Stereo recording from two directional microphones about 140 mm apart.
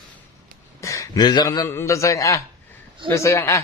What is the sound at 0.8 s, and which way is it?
A man's voice, 20° left (ahead or behind).